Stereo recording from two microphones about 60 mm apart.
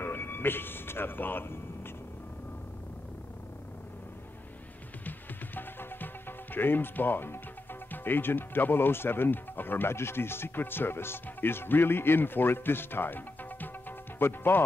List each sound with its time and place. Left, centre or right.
0.0 s speech: left
5.0 s music: left
7.9 s speech: left